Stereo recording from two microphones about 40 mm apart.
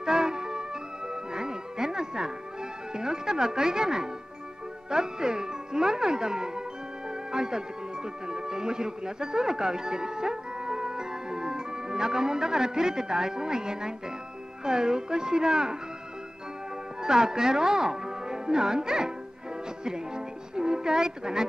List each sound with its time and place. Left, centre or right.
0.0 s music: centre
2.9 s speech: centre
17.0 s speech: centre
19.8 s music: centre